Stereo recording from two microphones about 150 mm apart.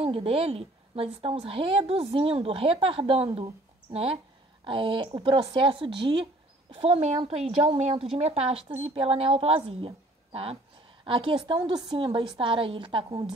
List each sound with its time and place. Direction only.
0.0 s a woman's voice: 40° right (ahead or behind)